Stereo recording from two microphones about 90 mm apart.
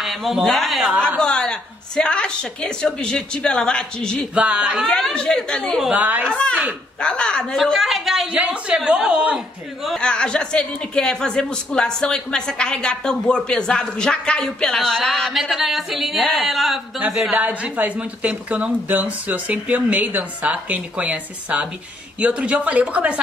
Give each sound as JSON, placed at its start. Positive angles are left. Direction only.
{"t": 0.0, "sound": "speech", "side_deg": 0}
{"t": 1.2, "sound": "speech", "side_deg": 10}
{"t": 4.4, "sound": "speech", "side_deg": -10}
{"t": 4.8, "sound": "speech", "side_deg": 10}
{"t": 5.9, "sound": "speech", "side_deg": -15}
{"t": 6.2, "sound": "speech", "side_deg": 10}
{"t": 7.5, "sound": "speech", "side_deg": 0}
{"t": 9.9, "sound": "a woman's voice", "side_deg": 10}
{"t": 17.4, "sound": "speech", "side_deg": -15}